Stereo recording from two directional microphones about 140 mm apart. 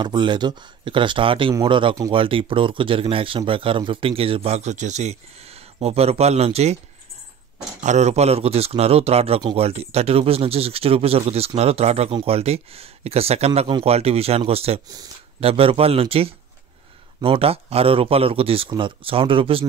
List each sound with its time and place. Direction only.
0.0 s a man's voice: 35° right (ahead or behind); by 6.8 s 50° right (ahead or behind)
7.8 s a man's voice: 55° right (ahead or behind); by 19.6 s 40° right (ahead or behind)